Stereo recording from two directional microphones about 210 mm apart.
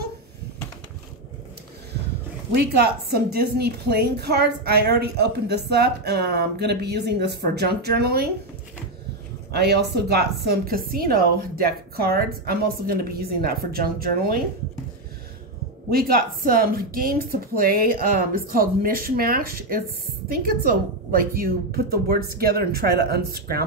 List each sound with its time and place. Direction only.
2.5 s a woman's voice: 50° right (ahead or behind)
9.5 s a woman's voice: 50° right (ahead or behind)
15.9 s a woman's voice: 45° right (ahead or behind)